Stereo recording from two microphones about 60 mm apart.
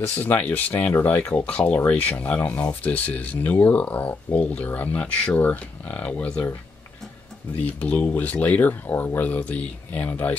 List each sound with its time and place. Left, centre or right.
0.0 s speech: left
7.5 s speech: left